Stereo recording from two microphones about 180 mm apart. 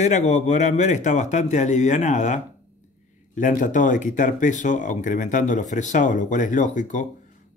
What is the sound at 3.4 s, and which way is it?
Speech, 45° left (ahead or behind).